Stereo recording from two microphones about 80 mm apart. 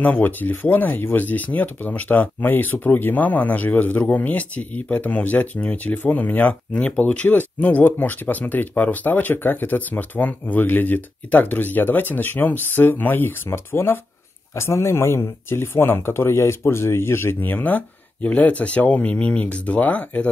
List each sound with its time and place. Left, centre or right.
0.0 s speech: left